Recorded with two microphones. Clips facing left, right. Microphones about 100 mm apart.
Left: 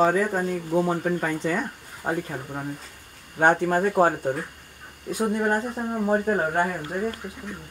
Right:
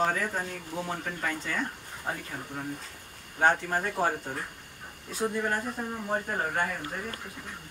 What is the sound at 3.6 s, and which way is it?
Speech, 45° left (ahead or behind).